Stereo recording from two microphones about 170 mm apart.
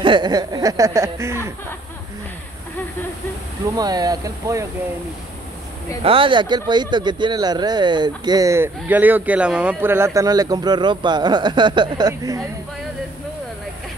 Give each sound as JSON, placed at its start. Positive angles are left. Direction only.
{"t": 0.0, "sound": "speech", "side_deg": -25}
{"t": 3.7, "sound": "speech", "side_deg": -20}
{"t": 6.0, "sound": "speech", "side_deg": -30}